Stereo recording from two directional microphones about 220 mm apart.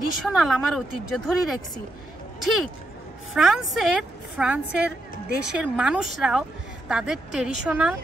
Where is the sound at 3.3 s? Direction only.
Centre (ahead or behind).